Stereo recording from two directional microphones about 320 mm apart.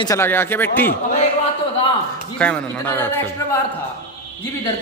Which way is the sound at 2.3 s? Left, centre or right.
Centre.